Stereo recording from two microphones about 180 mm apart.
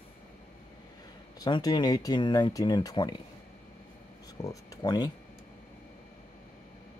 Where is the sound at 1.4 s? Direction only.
20° left (ahead or behind).